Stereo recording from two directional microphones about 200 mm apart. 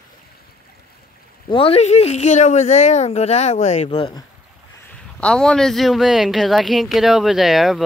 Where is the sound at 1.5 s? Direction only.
30° left (ahead or behind).